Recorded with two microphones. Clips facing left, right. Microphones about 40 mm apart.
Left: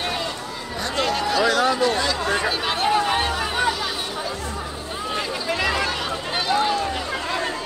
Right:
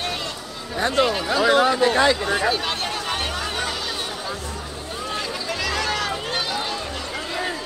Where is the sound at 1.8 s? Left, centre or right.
Right.